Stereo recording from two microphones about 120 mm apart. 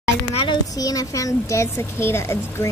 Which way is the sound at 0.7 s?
30° left (ahead or behind).